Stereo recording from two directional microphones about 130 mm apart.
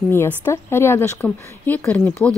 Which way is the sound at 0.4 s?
20° left (ahead or behind).